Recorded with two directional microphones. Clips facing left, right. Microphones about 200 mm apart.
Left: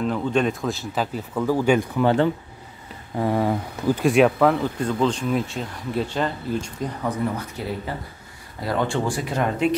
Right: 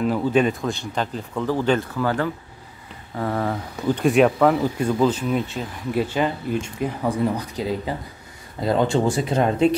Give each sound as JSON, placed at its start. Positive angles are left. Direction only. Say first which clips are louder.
{"t": 0.0, "sound": "speech", "louder": "right 3 dB", "side_deg": -5}
{"t": 3.2, "sound": "speech", "louder": "left 3 dB", "side_deg": 15}